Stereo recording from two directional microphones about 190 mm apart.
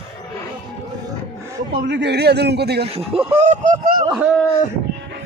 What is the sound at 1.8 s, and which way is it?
A man's voice, 65° right (ahead or behind).